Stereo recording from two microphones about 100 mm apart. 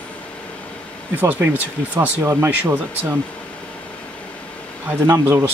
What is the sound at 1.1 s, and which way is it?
Speech, 15° right (ahead or behind).